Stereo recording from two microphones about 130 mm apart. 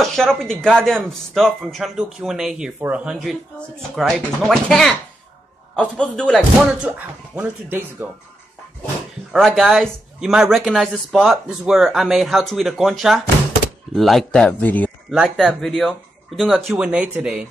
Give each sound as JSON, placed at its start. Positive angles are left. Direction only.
{"t": 0.0, "sound": "speech", "side_deg": 5}
{"t": 6.6, "sound": "speech", "side_deg": -10}
{"t": 9.3, "sound": "speech", "side_deg": 0}
{"t": 15.0, "sound": "speech", "side_deg": 0}